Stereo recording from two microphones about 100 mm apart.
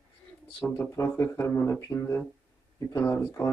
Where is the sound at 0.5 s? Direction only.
10° left (ahead or behind).